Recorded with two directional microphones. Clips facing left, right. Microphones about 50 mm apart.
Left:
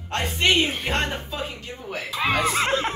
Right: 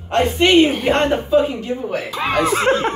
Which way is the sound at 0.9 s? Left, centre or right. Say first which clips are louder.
Right 12 dB; centre.